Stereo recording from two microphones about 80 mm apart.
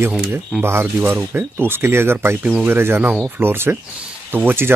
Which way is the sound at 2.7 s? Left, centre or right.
Right.